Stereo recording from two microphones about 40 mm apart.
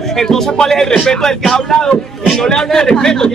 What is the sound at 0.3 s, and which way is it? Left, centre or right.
A man's voice, centre.